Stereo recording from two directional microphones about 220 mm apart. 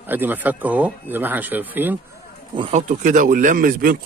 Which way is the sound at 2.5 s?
25° right (ahead or behind).